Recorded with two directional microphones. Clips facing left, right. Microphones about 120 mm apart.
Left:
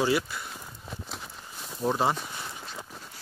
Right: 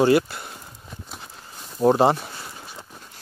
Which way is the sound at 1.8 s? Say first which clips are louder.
Right 10 dB; 60° right (ahead or behind).